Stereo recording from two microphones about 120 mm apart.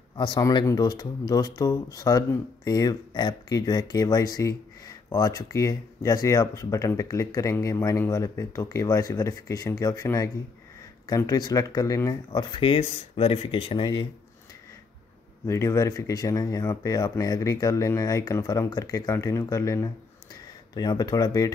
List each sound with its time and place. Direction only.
0.1 s a sound: 40° left (ahead or behind)
0.4 s speech: 30° left (ahead or behind)
15.4 s speech: 25° left (ahead or behind)